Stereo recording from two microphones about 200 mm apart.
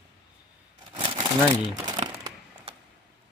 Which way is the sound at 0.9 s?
25° right (ahead or behind).